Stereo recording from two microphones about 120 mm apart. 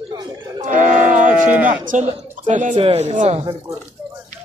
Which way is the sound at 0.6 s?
90° right.